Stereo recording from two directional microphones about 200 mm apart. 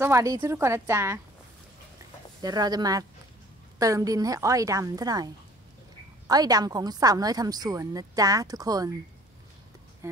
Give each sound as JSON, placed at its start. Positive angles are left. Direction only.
{"t": 0.0, "sound": "a woman's voice", "side_deg": -15}
{"t": 2.4, "sound": "a woman's voice", "side_deg": -20}